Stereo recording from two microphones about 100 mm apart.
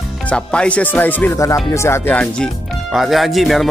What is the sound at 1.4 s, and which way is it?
Speech, 30° left (ahead or behind).